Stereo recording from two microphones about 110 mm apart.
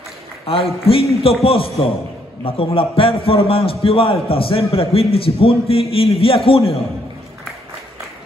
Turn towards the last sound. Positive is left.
turn(degrees=60)  # may be behind; listen again after turning